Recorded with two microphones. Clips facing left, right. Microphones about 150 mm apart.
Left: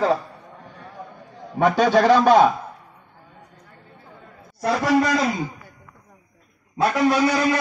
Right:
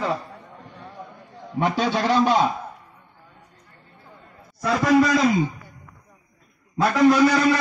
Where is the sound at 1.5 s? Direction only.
50° left (ahead or behind).